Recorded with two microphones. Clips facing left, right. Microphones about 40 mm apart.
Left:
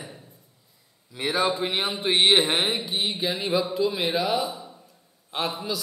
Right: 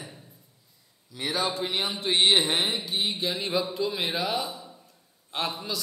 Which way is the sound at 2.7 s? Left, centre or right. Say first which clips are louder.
Left 2 dB; centre.